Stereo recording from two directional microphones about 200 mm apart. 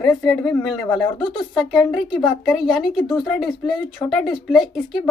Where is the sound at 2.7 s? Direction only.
20° left (ahead or behind).